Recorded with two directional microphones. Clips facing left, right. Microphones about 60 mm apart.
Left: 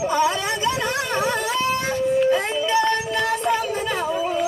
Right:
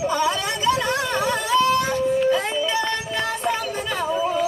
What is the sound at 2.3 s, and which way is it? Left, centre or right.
Music, left.